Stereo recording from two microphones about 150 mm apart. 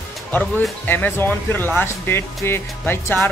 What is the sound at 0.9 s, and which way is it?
Speech, 15° left (ahead or behind).